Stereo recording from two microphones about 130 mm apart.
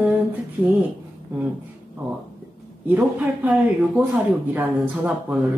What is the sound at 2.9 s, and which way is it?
Speech, 10° right (ahead or behind).